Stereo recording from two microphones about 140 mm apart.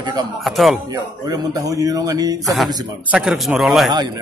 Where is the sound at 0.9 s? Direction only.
25° right (ahead or behind).